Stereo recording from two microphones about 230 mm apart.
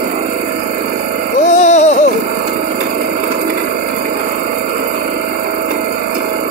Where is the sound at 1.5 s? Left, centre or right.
Left.